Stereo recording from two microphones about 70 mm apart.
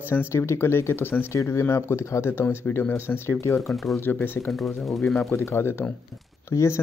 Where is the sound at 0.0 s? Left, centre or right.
Left.